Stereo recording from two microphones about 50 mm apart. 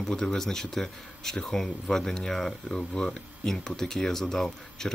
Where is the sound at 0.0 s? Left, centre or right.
Centre.